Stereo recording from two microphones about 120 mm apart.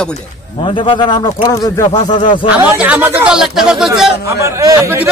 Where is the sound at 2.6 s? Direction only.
10° right (ahead or behind).